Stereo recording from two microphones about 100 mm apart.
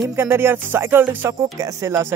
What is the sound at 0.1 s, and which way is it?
Music, 25° right (ahead or behind).